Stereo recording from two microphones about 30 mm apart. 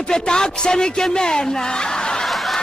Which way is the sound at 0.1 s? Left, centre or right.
Left.